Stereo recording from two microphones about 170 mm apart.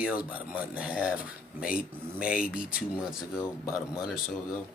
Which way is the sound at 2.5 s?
55° left (ahead or behind).